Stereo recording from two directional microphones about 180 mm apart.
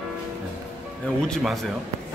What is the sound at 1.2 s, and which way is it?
Speech, 5° left (ahead or behind).